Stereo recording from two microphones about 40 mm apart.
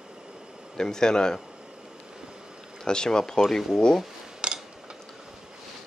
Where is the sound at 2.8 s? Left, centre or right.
Centre.